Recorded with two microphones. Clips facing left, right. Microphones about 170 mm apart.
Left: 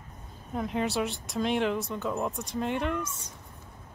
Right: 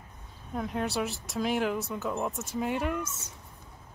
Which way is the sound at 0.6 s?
Centre (ahead or behind).